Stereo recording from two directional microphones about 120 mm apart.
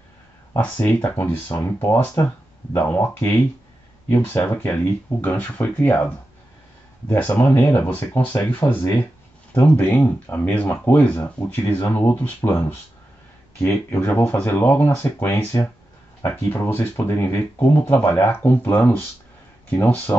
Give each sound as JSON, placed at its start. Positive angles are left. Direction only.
{"t": 0.6, "sound": "speech", "side_deg": 15}